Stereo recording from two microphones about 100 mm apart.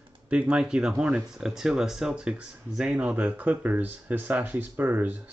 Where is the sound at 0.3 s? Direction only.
10° right (ahead or behind).